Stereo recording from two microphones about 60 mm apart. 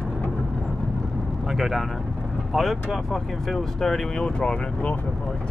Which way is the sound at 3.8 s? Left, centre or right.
Centre.